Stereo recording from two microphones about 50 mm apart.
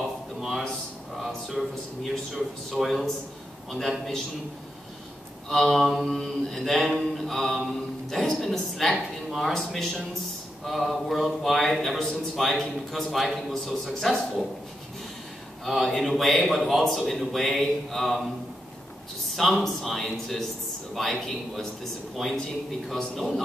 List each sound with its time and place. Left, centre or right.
0.4 s a sound: centre
1.1 s a man's voice: centre
5.5 s a man's voice: centre
6.0 s a man's voice: centre
15.6 s a man's voice: centre
19.3 s a man's voice: centre